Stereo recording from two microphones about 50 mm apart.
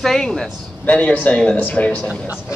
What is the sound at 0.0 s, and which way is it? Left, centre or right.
Speech, centre.